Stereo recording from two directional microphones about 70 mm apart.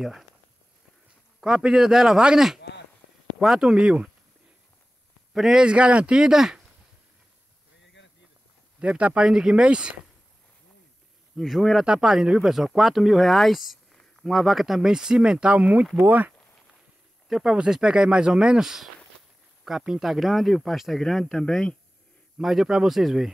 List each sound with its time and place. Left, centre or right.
1.4 s speech: centre
5.3 s a man's voice: centre
5.6 s speech: centre
8.7 s speech: centre
11.3 s speech: centre; by 16.3 s right
17.3 s speech: centre
22.4 s speech: centre